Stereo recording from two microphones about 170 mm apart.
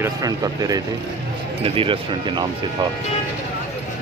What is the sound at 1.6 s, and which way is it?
Speech, 30° right (ahead or behind).